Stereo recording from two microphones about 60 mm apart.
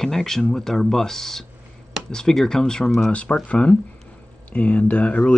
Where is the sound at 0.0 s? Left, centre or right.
Centre.